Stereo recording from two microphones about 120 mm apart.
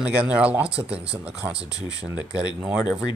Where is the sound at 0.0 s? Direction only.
10° right (ahead or behind).